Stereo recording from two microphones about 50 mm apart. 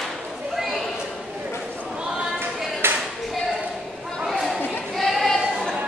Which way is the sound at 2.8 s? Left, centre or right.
Right.